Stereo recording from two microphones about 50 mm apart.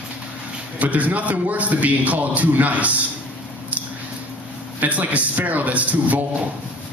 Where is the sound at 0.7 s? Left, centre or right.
Right.